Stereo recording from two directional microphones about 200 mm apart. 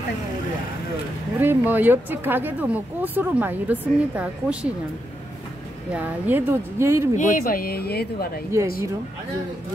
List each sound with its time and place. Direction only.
1.4 s speech: 10° right (ahead or behind)
5.9 s speech: 10° right (ahead or behind)
7.2 s speech: 40° left (ahead or behind)